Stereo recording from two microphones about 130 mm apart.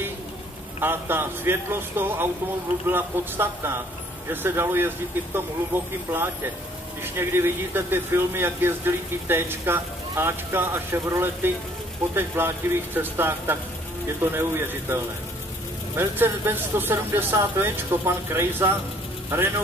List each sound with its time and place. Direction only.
0.7 s speech: 15° right (ahead or behind)
16.0 s speech: 15° right (ahead or behind)